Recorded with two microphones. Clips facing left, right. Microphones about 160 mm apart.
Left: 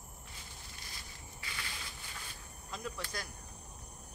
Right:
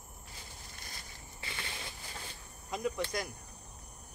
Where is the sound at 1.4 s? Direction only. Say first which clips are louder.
Right 3 dB; 25° right (ahead or behind).